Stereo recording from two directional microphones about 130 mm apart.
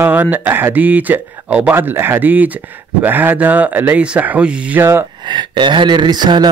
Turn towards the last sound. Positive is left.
turn(degrees=-30)  # may be behind; listen again after turning